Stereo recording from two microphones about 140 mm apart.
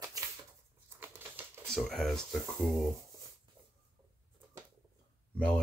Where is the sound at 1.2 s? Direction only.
15° right (ahead or behind).